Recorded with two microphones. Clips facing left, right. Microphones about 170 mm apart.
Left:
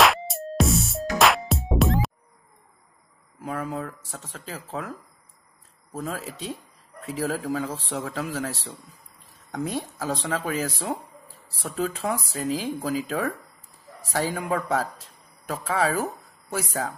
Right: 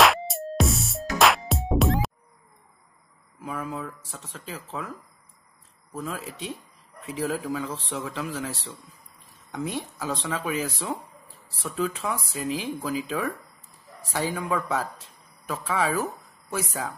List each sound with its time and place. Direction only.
0.0 s music: centre (ahead or behind)
4.1 s speech: 40° left (ahead or behind)
5.9 s speech: 40° left (ahead or behind)